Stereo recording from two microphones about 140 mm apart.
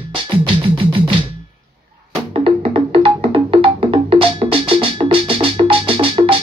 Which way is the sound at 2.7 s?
40° right (ahead or behind).